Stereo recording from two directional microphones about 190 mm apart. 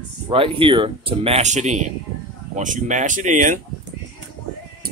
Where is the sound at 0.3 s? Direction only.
25° right (ahead or behind).